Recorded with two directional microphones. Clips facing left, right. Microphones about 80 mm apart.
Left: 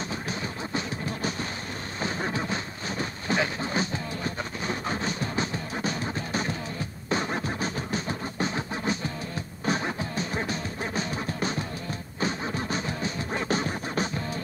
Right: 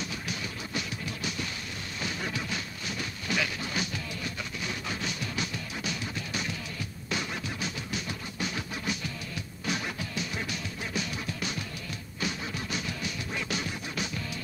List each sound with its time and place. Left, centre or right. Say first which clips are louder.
0.3 s music: left 4 dB; left
2.0 s a sound: left 5 dB; left
7.1 s music: left 6 dB; left